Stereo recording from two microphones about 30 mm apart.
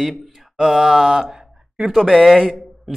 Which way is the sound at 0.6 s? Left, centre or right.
Centre.